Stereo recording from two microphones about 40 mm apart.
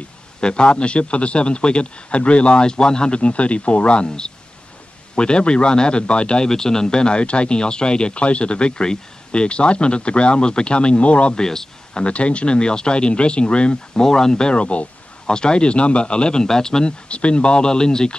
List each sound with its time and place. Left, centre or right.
0.4 s a man's voice: left
11.3 s speech: centre
11.9 s a man's voice: left
14.0 s speech: centre
14.5 s a man's voice: left
17.1 s a man's voice: left